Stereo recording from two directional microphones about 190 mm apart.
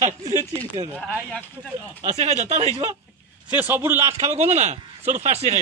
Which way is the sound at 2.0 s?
35° right (ahead or behind).